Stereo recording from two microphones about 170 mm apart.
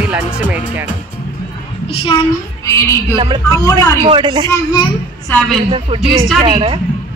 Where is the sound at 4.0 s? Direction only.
25° right (ahead or behind).